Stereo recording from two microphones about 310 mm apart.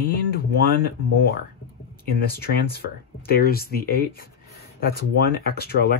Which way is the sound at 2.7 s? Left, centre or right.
Left.